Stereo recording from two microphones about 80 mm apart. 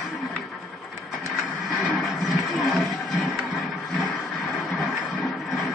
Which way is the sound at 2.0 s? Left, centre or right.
Centre.